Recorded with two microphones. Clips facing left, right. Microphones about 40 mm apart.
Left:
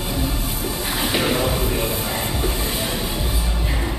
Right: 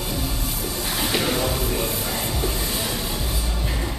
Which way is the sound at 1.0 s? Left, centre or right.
Centre.